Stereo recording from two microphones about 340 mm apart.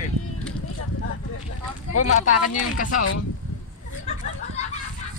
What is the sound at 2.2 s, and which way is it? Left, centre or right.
Speech, left.